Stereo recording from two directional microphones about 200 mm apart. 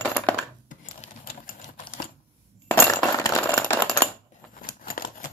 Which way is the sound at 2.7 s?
15° left (ahead or behind).